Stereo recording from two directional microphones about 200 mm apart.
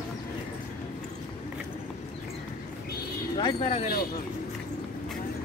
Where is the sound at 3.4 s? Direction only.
25° left (ahead or behind).